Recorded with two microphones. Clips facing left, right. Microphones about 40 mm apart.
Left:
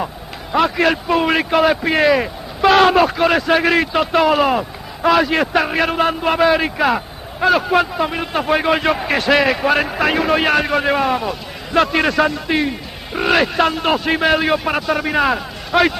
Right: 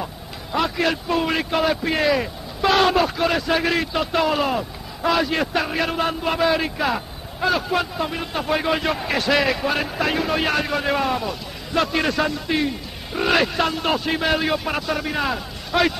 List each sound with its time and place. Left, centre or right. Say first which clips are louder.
0.5 s a man's voice: left 6 dB; left
5.5 s a man's voice: left 6 dB; left
7.8 s a man's voice: left 6 dB; left
8.9 s a man's voice: left 5 dB; left
9.6 s a man's voice: left 6 dB; left
10.9 s a man's voice: left 5 dB; left
11.7 s a man's voice: left 6 dB; left
12.4 s a man's voice: left 4 dB; left
13.2 s a man's voice: left 4 dB; left
14.0 s a man's voice: left 5 dB; left
15.0 s a man's voice: left 7 dB; left
15.7 s a man's voice: left 5 dB; left